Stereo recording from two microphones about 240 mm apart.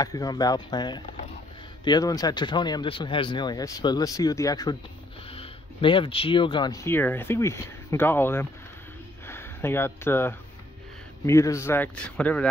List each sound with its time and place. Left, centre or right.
0.0 s speech: centre